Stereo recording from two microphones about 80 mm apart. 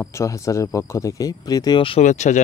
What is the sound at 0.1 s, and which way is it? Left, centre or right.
Speech, left.